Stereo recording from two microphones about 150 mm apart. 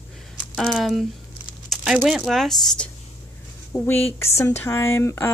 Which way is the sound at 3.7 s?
15° left (ahead or behind).